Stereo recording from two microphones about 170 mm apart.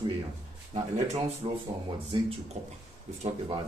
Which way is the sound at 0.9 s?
40° right (ahead or behind).